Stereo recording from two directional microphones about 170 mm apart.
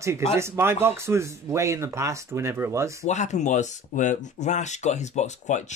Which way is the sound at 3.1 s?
45° left (ahead or behind).